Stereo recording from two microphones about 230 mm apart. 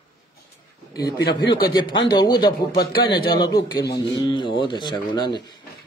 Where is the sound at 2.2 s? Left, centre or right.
Centre.